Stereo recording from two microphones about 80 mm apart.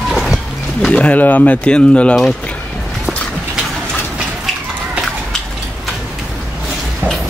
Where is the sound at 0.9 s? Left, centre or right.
Centre.